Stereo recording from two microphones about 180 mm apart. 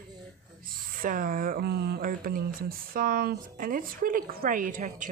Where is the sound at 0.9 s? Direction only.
50° right (ahead or behind).